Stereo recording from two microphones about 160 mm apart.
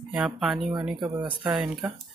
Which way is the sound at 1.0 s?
30° right (ahead or behind).